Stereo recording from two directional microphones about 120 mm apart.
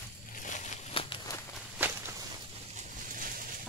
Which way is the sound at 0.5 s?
90° left.